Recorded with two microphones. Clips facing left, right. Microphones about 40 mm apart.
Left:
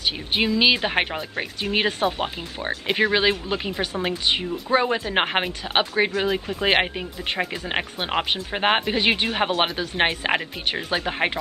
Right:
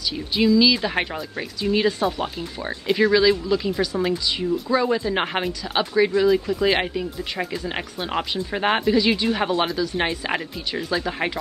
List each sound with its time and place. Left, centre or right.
0.0 s a woman's voice: left